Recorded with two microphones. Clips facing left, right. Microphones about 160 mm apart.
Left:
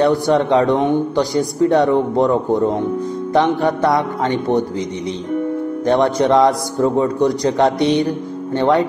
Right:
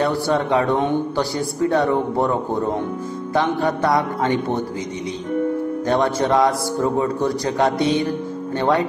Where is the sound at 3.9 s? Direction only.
20° left (ahead or behind).